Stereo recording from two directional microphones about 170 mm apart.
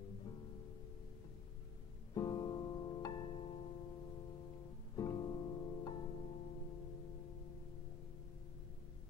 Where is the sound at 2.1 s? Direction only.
25° left (ahead or behind).